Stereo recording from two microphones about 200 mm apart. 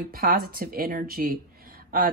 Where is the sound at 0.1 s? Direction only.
50° right (ahead or behind).